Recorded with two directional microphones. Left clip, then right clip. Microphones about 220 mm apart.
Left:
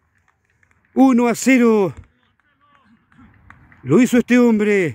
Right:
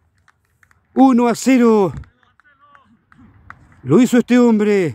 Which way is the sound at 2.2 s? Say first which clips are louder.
Right 8 dB; 35° right (ahead or behind).